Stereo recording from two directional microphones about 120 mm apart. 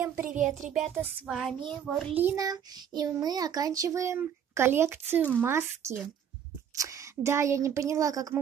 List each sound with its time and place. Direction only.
0.0 s music: 20° right (ahead or behind)
0.7 s child singing: centre (ahead or behind)
1.7 s a child's voice: 5° left (ahead or behind)
2.3 s a child's voice: 30° right (ahead or behind)